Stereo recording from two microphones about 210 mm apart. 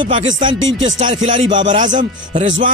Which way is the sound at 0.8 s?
35° right (ahead or behind).